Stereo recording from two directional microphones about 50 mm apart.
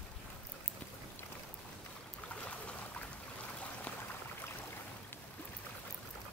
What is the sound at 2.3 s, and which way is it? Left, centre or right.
Boat, left.